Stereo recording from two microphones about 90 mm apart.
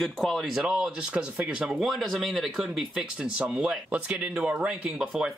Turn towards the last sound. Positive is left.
turn(degrees=-10)  # may be behind; listen again after turning